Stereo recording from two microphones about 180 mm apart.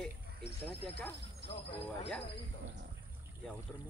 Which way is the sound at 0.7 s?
10° left (ahead or behind).